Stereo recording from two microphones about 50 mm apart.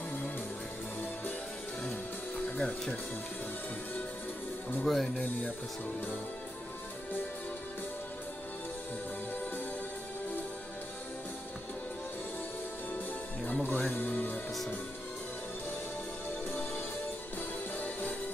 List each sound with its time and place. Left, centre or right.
2.6 s speech: centre
4.8 s speech: centre
13.5 s music: left
17.7 s music: left